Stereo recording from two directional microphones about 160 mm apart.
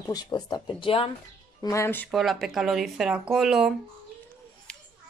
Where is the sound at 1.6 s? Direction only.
15° left (ahead or behind).